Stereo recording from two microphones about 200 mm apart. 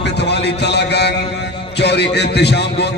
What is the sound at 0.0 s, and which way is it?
A man's voice, 60° left (ahead or behind).